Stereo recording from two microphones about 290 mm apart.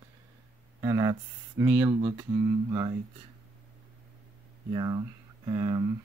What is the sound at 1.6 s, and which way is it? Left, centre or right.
Speech, centre.